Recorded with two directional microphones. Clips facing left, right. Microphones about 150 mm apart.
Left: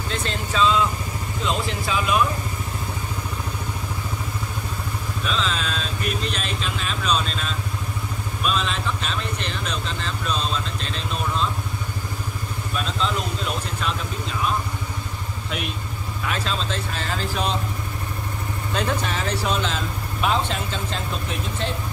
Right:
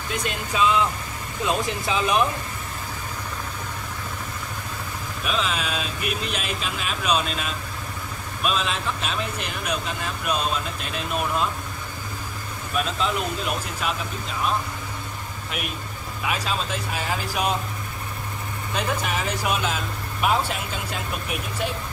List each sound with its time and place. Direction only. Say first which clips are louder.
0.1 s speech: even; 15° right (ahead or behind)
5.2 s speech: even; 10° right (ahead or behind)
16.3 s speech: even; 10° right (ahead or behind)
18.8 s speech: left 1 dB; 10° right (ahead or behind)